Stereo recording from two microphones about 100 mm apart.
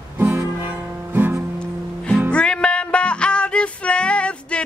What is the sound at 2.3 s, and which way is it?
Music, 10° left (ahead or behind).